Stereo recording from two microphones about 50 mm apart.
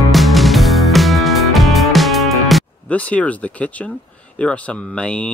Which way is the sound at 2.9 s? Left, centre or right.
Left.